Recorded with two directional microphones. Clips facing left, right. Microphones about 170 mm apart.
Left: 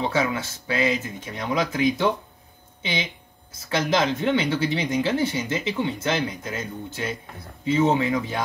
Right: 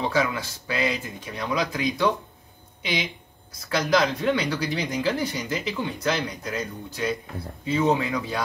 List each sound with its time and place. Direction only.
0.0 s speech: 20° left (ahead or behind)